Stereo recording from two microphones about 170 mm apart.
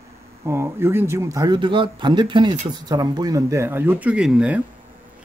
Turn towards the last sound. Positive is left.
turn(degrees=-5)  # may be behind; listen again after turning